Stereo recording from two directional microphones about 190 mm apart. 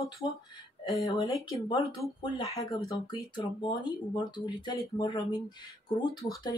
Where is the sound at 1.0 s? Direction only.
20° left (ahead or behind).